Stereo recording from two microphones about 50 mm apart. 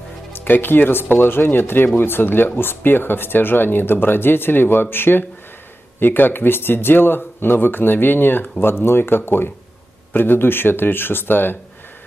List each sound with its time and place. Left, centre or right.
0.3 s speech: left